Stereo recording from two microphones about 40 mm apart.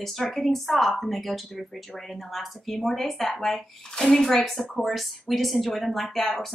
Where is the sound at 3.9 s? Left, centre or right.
Centre.